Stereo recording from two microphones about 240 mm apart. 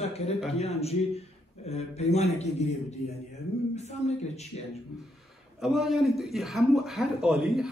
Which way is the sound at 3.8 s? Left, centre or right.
Left.